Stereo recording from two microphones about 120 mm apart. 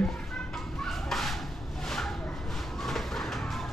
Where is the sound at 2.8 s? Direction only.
Centre (ahead or behind).